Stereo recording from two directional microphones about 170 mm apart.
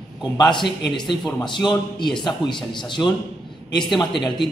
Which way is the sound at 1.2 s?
25° left (ahead or behind).